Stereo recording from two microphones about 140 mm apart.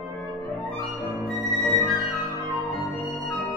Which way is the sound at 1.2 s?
Centre (ahead or behind).